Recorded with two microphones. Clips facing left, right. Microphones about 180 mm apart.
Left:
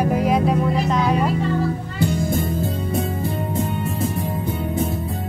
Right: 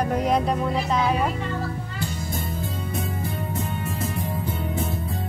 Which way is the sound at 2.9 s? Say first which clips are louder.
Left 6 dB; 25° left (ahead or behind).